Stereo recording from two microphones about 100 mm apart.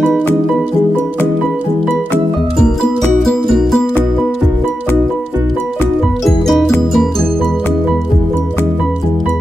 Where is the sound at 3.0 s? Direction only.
5° left (ahead or behind).